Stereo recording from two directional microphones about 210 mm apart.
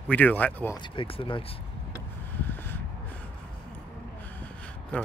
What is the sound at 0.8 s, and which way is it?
Speech, 25° left (ahead or behind).